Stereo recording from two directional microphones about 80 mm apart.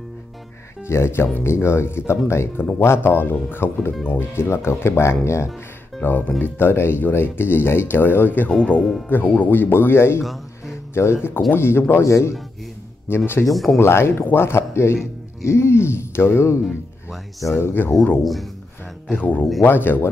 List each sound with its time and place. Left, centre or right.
0.8 s speech: left
6.0 s speech: left
8.5 s speech: centre; by 10.2 s left
10.2 s music: centre
11.5 s speech: left
16.6 s speech: centre
17.6 s speech: left
18.2 s speech: centre
19.0 s speech: centre